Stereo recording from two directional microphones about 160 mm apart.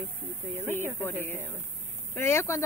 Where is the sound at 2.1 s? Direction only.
15° left (ahead or behind).